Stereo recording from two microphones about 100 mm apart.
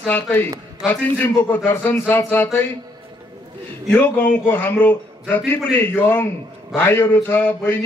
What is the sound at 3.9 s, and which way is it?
A man's voice, 20° left (ahead or behind).